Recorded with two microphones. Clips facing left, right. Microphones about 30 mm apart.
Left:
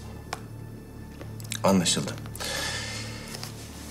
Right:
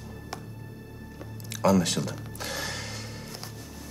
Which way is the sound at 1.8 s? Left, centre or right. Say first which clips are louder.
Left 1 dB; centre.